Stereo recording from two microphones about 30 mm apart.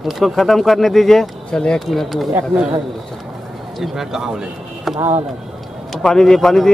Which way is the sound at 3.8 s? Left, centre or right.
Centre.